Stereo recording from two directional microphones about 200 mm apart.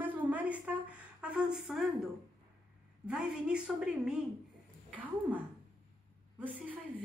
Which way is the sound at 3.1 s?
5° right (ahead or behind).